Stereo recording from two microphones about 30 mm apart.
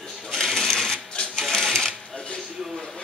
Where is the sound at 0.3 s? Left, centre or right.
Centre.